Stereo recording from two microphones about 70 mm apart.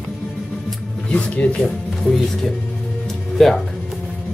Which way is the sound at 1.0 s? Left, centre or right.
Centre.